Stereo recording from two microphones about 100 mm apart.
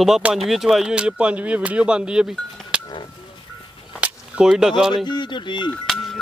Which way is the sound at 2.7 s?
10° right (ahead or behind).